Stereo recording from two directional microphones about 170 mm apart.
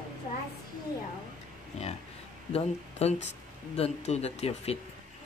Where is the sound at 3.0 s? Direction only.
40° left (ahead or behind).